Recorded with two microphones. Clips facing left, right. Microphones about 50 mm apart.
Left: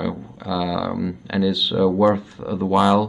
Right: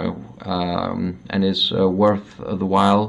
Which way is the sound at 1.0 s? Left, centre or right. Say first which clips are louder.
Right 1 dB; centre.